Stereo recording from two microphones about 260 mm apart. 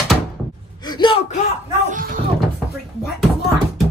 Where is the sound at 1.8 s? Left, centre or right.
Right.